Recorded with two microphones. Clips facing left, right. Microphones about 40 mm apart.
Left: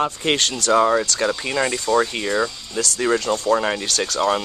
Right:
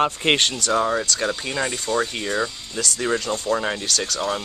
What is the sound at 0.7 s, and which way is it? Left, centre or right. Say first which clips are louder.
Speech: left 7 dB; centre.